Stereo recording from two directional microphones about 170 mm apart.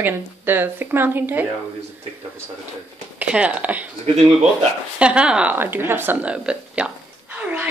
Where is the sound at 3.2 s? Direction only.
5° right (ahead or behind).